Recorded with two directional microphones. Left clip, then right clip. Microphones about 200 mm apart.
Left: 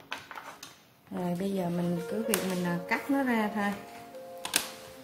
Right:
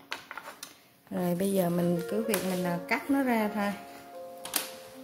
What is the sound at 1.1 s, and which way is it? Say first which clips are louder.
Speech: right 4 dB; 50° right (ahead or behind).